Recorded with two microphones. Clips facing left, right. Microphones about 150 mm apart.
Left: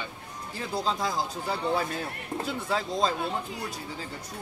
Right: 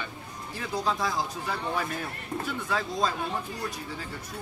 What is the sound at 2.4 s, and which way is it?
Speech, 25° left (ahead or behind).